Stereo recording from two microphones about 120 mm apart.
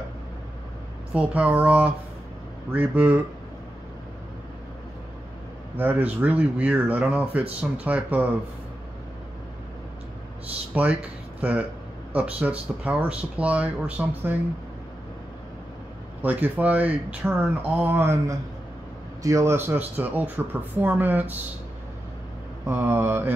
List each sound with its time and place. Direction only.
1.1 s speech: 10° right (ahead or behind)
5.8 s speech: 15° right (ahead or behind)
10.7 s speech: 10° right (ahead or behind)
12.1 s speech: 10° right (ahead or behind)
16.2 s speech: 15° right (ahead or behind)
22.7 s speech: 15° right (ahead or behind)